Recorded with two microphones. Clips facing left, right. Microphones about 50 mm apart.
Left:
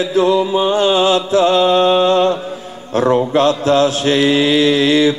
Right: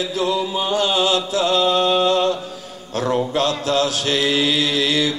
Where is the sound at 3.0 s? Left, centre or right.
Left.